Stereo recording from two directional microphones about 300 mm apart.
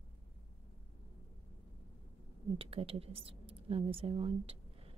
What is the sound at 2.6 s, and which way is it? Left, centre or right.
A woman's voice, centre.